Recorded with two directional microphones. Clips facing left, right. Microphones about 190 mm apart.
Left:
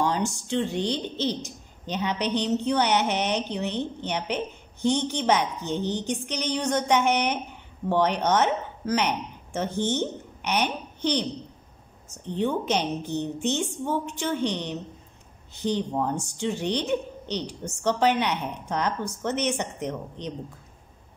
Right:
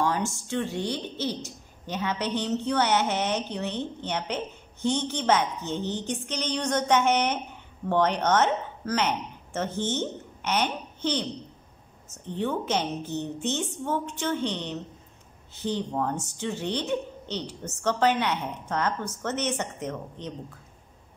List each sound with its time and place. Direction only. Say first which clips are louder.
0.0 s a woman's voice: left 1 dB; 15° left (ahead or behind)